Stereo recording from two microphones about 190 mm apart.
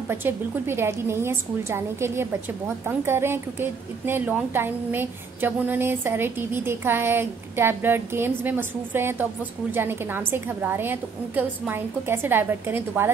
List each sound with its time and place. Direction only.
0.1 s a woman's voice: 10° right (ahead or behind)